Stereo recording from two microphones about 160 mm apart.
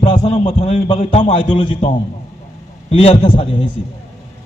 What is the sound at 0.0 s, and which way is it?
A man's voice, 45° left (ahead or behind).